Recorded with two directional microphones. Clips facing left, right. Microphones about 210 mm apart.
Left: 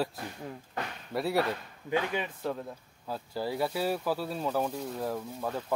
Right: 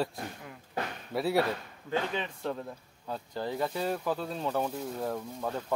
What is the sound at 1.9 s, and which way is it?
Speech, 10° left (ahead or behind).